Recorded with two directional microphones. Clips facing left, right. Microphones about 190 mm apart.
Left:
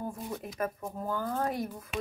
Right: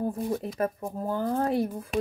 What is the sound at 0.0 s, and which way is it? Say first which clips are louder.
Speech: right 8 dB; 35° right (ahead or behind).